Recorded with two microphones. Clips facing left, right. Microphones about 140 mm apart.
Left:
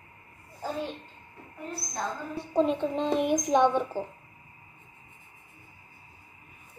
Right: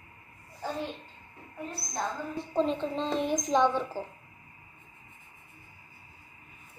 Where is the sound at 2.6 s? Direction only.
10° left (ahead or behind).